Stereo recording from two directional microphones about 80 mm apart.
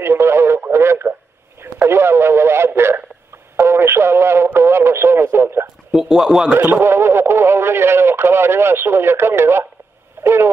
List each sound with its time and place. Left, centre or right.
0.0 s radio: right
5.9 s speech: centre
6.6 s speech: right
10.2 s a sound: right